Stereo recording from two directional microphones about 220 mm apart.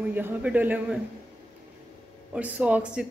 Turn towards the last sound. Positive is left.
turn(degrees=-5)  # may be behind; listen again after turning